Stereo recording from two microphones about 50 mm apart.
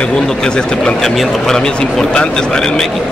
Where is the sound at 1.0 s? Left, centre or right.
Centre.